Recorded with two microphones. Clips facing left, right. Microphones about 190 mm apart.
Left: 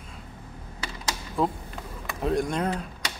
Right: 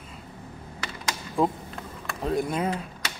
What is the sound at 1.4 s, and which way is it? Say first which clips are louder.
Speech: right 2 dB; 10° right (ahead or behind).